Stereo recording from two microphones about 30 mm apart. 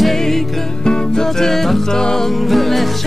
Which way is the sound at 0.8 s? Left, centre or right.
Left.